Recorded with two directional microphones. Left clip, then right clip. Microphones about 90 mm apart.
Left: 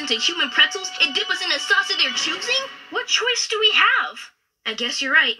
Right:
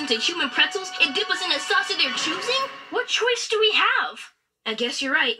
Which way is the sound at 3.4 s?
45° left (ahead or behind).